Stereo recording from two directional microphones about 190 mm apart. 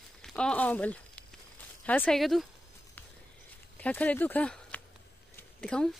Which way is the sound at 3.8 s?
10° left (ahead or behind).